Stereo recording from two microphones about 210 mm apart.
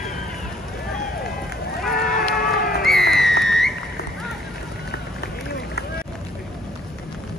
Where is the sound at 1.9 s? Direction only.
45° left (ahead or behind).